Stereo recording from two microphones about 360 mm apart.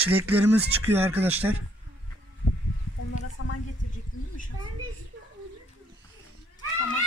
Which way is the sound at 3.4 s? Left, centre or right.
Left.